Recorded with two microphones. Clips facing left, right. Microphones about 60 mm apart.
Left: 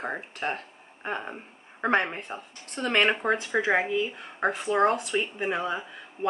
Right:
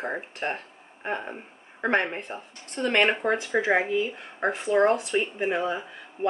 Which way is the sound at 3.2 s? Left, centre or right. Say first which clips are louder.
Right 1 dB; left.